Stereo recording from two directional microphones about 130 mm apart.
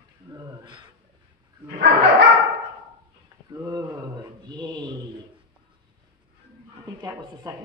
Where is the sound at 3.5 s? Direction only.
25° right (ahead or behind).